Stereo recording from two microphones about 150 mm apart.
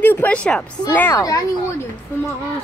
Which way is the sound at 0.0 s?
10° left (ahead or behind).